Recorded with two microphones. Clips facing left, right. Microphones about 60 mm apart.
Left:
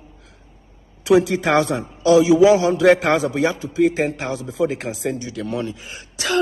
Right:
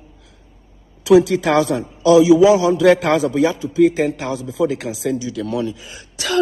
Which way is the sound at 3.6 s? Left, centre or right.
Left.